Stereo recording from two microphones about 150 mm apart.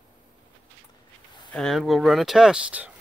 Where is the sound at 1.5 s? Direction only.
Centre (ahead or behind).